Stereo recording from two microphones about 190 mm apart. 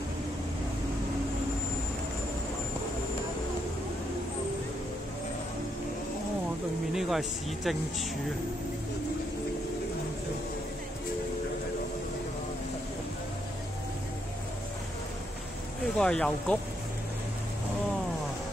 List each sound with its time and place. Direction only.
6.9 s speech: centre (ahead or behind)
16.0 s speech: 5° left (ahead or behind)